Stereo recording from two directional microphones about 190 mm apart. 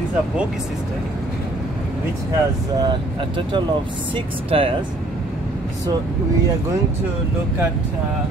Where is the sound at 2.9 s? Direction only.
25° right (ahead or behind).